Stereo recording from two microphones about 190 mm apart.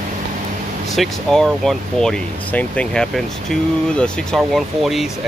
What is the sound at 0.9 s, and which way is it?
Speech, centre (ahead or behind).